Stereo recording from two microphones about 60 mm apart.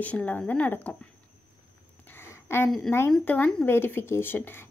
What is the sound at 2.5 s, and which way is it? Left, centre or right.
Speech, left.